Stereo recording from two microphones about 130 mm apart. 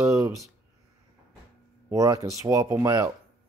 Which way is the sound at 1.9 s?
25° right (ahead or behind).